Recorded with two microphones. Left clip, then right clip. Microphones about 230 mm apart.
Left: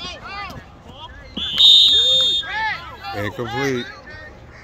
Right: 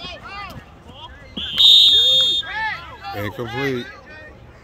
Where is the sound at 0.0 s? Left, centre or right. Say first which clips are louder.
Left 2 dB; left.